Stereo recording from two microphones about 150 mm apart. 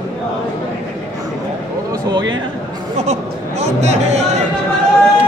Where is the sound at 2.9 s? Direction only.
50° right (ahead or behind).